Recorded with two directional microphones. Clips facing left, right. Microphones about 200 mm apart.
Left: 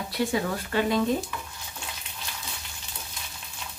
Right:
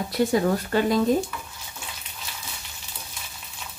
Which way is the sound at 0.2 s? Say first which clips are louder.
Right 6 dB; 40° right (ahead or behind).